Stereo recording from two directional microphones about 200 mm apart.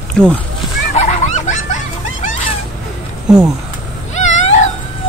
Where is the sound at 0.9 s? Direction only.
35° left (ahead or behind).